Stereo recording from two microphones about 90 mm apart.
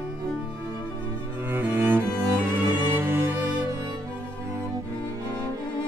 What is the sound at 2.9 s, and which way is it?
Music, 25° right (ahead or behind).